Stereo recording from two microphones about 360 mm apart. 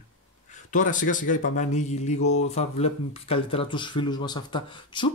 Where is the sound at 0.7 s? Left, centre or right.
Left.